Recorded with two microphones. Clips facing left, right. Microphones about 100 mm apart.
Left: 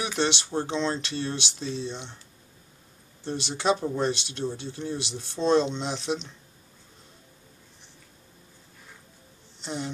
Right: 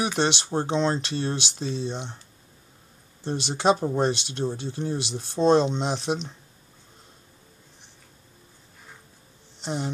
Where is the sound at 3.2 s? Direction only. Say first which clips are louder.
Right 4 dB; 50° right (ahead or behind).